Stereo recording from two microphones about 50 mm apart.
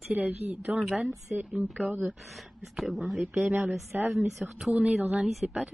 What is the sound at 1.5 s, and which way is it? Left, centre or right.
Speech, centre.